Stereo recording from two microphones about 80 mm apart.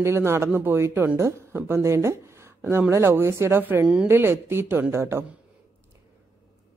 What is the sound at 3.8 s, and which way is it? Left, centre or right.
Speech, centre.